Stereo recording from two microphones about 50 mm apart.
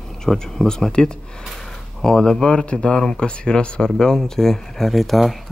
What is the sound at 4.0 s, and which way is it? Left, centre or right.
A man's voice, centre.